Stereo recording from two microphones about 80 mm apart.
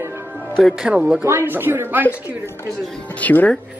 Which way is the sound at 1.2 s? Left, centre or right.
Right.